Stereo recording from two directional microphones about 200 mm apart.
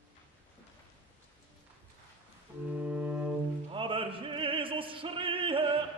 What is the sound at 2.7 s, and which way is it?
Music, 5° right (ahead or behind).